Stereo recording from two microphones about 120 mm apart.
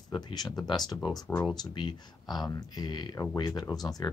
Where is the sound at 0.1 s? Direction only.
35° left (ahead or behind).